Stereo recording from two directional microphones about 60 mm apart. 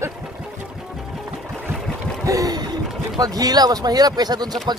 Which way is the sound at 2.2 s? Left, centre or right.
Right.